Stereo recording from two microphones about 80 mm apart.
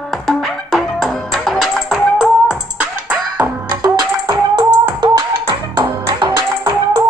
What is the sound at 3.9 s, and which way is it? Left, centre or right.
Music, right.